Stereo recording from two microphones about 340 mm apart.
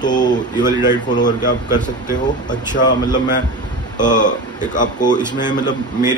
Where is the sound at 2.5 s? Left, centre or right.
Centre.